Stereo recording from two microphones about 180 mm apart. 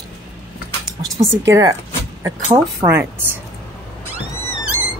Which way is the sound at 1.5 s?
20° right (ahead or behind).